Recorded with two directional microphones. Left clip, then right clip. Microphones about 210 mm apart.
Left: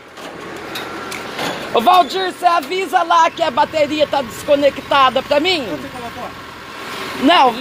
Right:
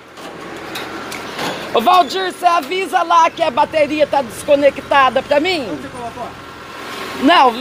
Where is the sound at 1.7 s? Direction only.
5° left (ahead or behind).